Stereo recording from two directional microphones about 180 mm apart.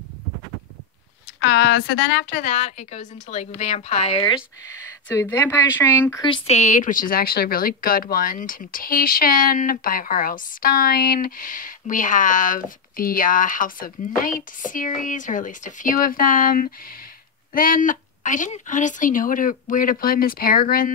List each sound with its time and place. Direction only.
1.4 s a woman's voice: 75° left (ahead or behind); by 4.2 s 40° left (ahead or behind)
5.0 s speech: 10° left (ahead or behind)
6.2 s speech: 30° left (ahead or behind); by 20.9 s 55° left (ahead or behind)